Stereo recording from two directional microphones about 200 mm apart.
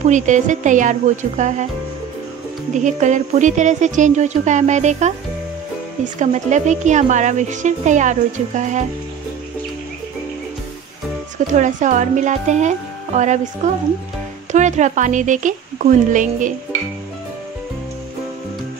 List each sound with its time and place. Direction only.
0.0 s speech: 40° right (ahead or behind)
2.7 s speech: 35° right (ahead or behind)
6.1 s speech: 35° right (ahead or behind)
11.5 s speech: 40° right (ahead or behind)